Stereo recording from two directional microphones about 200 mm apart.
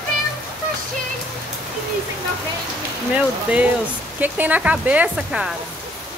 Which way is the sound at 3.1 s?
5° right (ahead or behind).